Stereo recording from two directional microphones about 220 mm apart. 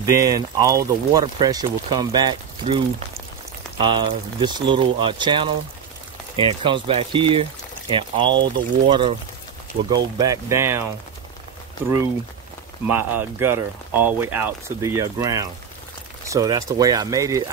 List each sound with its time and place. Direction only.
0.0 s speech: 15° right (ahead or behind)
3.8 s speech: 20° right (ahead or behind)
12.8 s speech: 10° right (ahead or behind)